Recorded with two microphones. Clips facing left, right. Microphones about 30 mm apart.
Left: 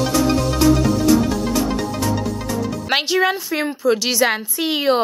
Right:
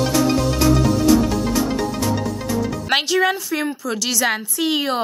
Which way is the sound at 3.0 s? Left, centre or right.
Centre.